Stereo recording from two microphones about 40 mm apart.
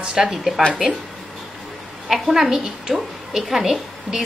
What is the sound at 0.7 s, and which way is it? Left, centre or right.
Speech, right.